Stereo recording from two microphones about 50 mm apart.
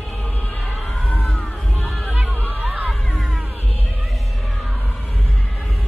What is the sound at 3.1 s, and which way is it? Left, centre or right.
Music, centre.